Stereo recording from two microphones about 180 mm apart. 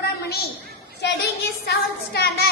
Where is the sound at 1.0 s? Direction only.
70° left (ahead or behind).